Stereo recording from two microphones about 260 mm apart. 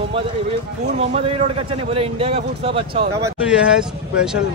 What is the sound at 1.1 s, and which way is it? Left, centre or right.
A man's voice, right.